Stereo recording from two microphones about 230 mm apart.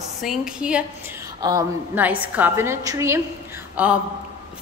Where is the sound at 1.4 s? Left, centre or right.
Centre.